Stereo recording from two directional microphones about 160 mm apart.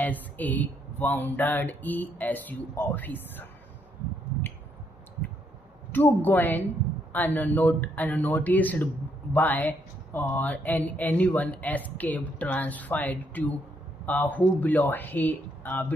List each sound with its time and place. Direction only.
0.4 s speech: 10° left (ahead or behind)
5.9 s speech: 10° left (ahead or behind)